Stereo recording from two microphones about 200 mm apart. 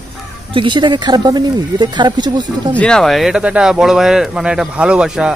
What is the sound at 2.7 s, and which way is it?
Speech, 5° left (ahead or behind).